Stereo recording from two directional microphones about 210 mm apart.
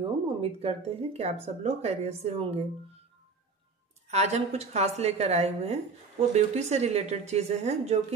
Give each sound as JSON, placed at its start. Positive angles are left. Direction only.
{"t": 0.4, "sound": "speech", "side_deg": -30}
{"t": 4.1, "sound": "speech", "side_deg": -30}